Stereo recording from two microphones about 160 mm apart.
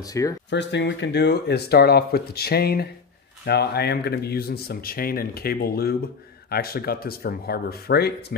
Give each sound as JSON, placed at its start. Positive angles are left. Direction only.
{"t": 0.0, "sound": "speech", "side_deg": 20}
{"t": 0.5, "sound": "speech", "side_deg": 90}
{"t": 3.4, "sound": "speech", "side_deg": 90}